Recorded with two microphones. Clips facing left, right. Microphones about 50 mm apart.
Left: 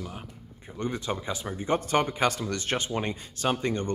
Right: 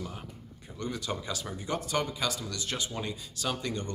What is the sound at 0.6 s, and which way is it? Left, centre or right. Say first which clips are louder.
Speech: left 4 dB; left.